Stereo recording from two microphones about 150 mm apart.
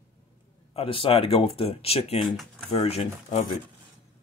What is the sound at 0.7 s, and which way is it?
Speech, 40° left (ahead or behind).